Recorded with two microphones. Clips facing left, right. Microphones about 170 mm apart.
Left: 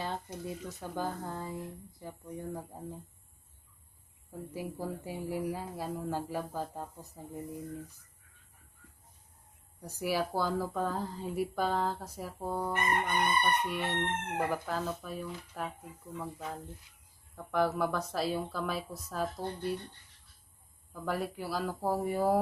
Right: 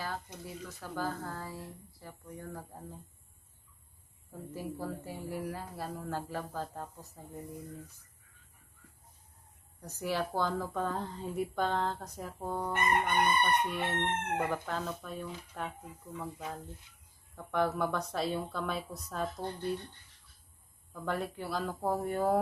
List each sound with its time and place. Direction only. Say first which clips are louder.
0.0 s speech: left 3 dB; 25° left (ahead or behind)
4.6 s speech: even; 15° left (ahead or behind)
9.8 s speech: left 2 dB; 10° left (ahead or behind)
17.4 s speech: left 1 dB; centre (ahead or behind)
20.9 s speech: left 1 dB; centre (ahead or behind)